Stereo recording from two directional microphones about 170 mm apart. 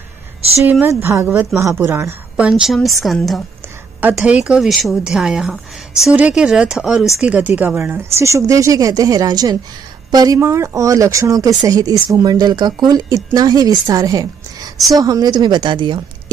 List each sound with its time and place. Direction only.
0.7 s speech: 15° right (ahead or behind)